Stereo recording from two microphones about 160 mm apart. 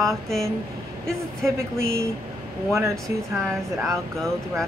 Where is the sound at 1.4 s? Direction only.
15° right (ahead or behind).